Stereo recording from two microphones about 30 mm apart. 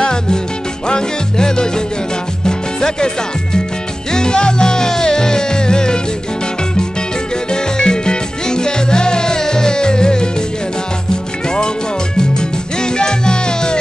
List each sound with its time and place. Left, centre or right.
0.0 s salsa music: left
0.8 s music: left
4.1 s music: left
7.5 s music: left
12.2 s music: left